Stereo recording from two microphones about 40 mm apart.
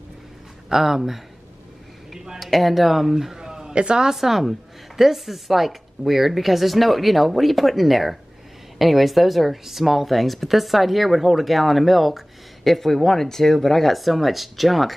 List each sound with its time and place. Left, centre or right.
0.7 s speech: centre
2.3 s speech: centre
3.3 s a sound: centre
4.1 s a woman's voice: centre